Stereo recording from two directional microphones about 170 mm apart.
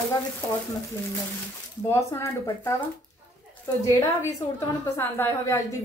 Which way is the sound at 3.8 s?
15° left (ahead or behind).